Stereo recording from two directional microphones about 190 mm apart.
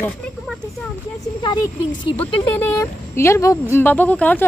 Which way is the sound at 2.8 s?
15° left (ahead or behind).